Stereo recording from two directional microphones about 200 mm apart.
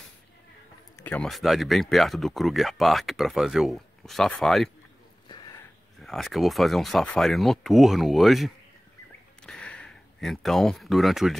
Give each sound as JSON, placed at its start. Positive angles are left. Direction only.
{"t": 0.9, "sound": "speech", "side_deg": 10}
{"t": 5.3, "sound": "a sound", "side_deg": 20}
{"t": 5.9, "sound": "speech", "side_deg": 0}
{"t": 9.5, "sound": "speech", "side_deg": 5}